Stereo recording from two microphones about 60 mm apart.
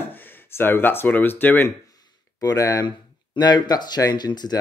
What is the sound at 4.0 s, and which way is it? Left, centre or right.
Speech, left.